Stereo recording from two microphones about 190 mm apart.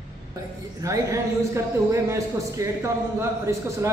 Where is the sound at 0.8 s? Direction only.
15° right (ahead or behind).